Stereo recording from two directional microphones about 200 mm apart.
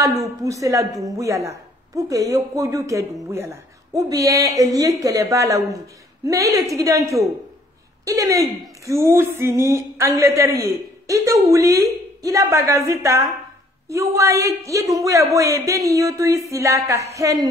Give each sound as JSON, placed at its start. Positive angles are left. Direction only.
{"t": 0.0, "sound": "a woman's voice", "side_deg": -15}